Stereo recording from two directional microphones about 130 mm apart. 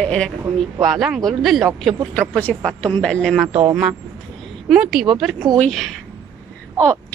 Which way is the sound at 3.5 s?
50° right (ahead or behind).